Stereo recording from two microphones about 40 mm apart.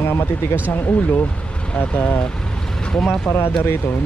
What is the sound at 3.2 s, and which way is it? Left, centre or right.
Speech, left.